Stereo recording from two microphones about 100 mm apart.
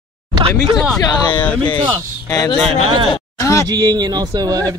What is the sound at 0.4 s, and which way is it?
Speech, 60° right (ahead or behind).